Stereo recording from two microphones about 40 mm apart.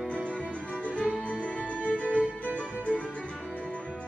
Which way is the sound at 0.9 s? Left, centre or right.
Left.